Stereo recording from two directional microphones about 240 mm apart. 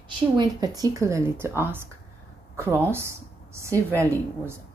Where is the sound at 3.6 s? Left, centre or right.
Centre.